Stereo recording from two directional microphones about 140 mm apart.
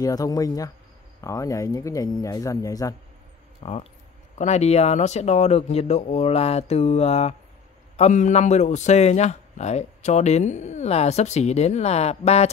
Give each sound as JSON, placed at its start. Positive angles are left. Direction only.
{"t": 0.0, "sound": "speech", "side_deg": 25}
{"t": 3.6, "sound": "a man's voice", "side_deg": 50}